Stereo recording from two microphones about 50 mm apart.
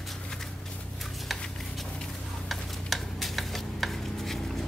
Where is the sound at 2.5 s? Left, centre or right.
Centre.